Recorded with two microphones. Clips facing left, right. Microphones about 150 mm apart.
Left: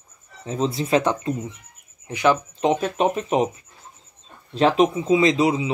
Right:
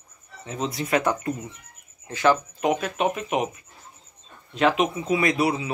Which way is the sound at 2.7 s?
30° left (ahead or behind).